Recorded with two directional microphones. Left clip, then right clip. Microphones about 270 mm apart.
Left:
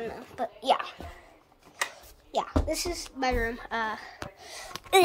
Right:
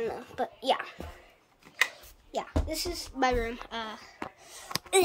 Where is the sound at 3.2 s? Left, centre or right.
Centre.